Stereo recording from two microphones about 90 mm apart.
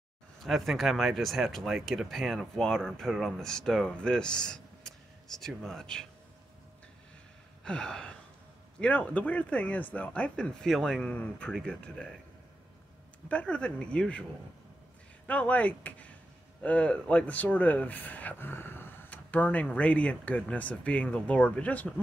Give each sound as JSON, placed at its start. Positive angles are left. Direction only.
{"t": 0.4, "sound": "speech", "side_deg": 0}
{"t": 7.6, "sound": "speech", "side_deg": 10}
{"t": 13.3, "sound": "speech", "side_deg": 15}
{"t": 15.2, "sound": "speech", "side_deg": 15}